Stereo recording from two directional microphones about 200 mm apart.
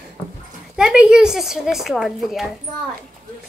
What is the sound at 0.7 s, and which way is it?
A woman's voice, 5° right (ahead or behind).